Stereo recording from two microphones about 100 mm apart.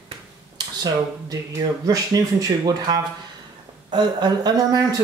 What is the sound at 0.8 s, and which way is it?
Speech, 40° right (ahead or behind).